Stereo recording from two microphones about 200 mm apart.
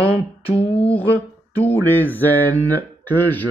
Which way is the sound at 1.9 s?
10° left (ahead or behind).